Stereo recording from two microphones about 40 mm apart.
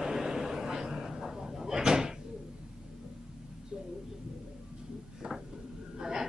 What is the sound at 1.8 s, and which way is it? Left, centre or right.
Door, centre.